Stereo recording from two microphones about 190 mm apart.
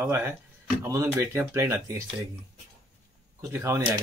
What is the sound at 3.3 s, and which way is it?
Speech, 15° right (ahead or behind).